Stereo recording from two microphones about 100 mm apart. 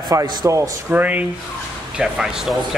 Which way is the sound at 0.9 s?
15° right (ahead or behind).